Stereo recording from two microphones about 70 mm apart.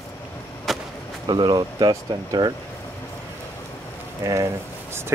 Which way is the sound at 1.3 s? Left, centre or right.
Right.